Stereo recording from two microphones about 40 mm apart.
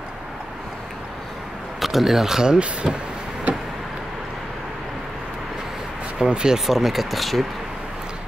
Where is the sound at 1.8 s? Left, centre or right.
Centre; by 3.0 s right.